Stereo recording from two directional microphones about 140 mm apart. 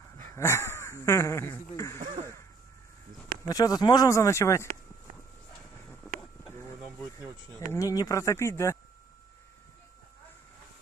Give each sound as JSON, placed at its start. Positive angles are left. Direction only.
{"t": 0.4, "sound": "speech", "side_deg": 20}
{"t": 3.4, "sound": "speech", "side_deg": 25}
{"t": 5.9, "sound": "a sound", "side_deg": 5}
{"t": 7.5, "sound": "speech", "side_deg": 25}